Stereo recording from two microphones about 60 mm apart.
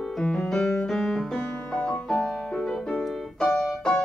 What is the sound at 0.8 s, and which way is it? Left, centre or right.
Piano, centre.